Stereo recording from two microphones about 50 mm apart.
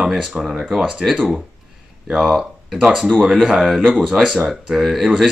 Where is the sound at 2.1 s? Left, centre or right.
Centre.